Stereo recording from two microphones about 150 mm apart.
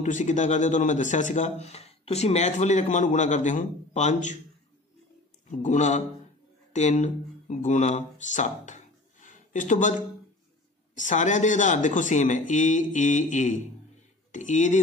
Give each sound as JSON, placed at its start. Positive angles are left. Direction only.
{"t": 0.0, "sound": "a man's voice", "side_deg": 55}
{"t": 5.5, "sound": "a man's voice", "side_deg": 55}
{"t": 11.0, "sound": "speech", "side_deg": 55}